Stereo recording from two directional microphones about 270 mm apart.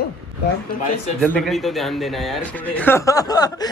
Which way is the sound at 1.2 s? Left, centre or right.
Centre.